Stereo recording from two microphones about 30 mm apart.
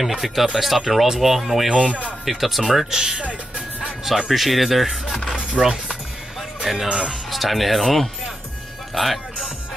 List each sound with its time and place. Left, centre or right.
0.0 s speech: centre
3.2 s speech: right
4.3 s speech: centre
5.3 s music: centre
6.6 s speech: centre